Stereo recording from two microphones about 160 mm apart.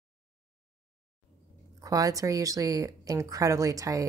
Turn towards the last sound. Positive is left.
turn(degrees=-20)  # may be behind; listen again after turning